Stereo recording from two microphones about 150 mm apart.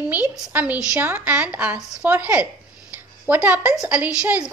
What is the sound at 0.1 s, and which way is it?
A woman's voice, 10° right (ahead or behind).